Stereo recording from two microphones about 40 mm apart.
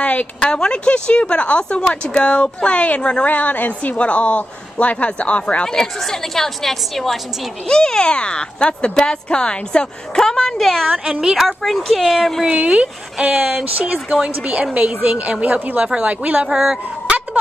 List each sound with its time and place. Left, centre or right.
0.0 s a sound: left
0.4 s speech: left
3.3 s speech: left
3.9 s speech: left
5.9 s a woman's voice: centre
7.6 s a woman's voice: centre
10.9 s a woman's voice: centre
11.3 s speech: centre
12.4 s a woman's voice: right
15.8 s speech: right
16.1 s a woman's voice: right
16.4 s a woman's voice: centre